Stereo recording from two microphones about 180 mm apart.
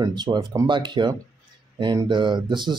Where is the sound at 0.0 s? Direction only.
25° right (ahead or behind).